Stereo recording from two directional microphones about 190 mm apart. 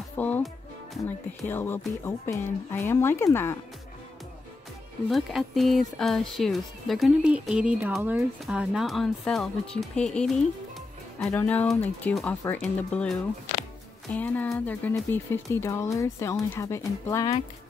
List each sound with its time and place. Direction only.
0.2 s music: 10° left (ahead or behind)
1.0 s speech: 10° left (ahead or behind)
5.1 s speech: centre (ahead or behind); by 17.3 s 15° left (ahead or behind)